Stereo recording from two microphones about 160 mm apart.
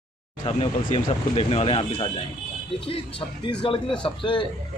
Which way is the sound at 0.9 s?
35° left (ahead or behind).